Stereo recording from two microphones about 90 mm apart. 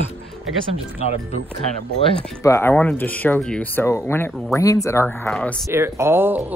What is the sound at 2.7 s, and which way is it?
Speech, 15° left (ahead or behind).